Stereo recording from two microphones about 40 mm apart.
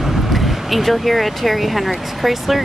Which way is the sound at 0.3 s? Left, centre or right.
Centre.